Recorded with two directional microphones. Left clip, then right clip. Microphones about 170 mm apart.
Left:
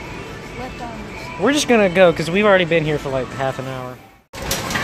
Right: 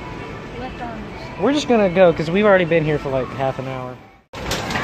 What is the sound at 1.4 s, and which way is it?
Speech, 10° left (ahead or behind).